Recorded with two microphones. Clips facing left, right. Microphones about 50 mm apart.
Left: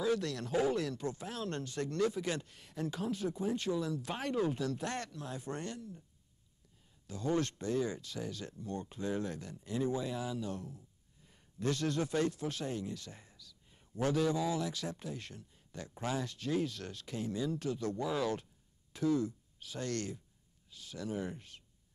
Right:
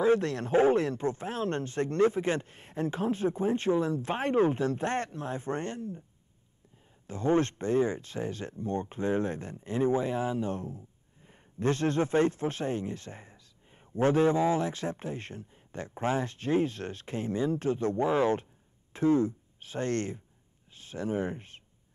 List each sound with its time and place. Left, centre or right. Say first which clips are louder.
0.0 s speech: right 8 dB; right
7.1 s speech: right 7 dB; right
20.7 s a sound: right 7 dB; right